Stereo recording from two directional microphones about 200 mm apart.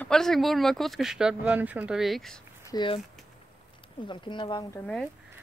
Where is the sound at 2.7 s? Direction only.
25° left (ahead or behind).